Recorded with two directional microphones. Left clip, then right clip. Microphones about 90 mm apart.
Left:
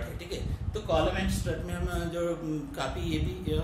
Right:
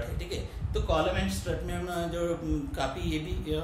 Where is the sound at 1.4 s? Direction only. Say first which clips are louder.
Right 1 dB; 30° right (ahead or behind).